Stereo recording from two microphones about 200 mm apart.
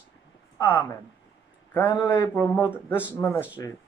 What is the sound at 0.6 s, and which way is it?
Speech, 10° left (ahead or behind).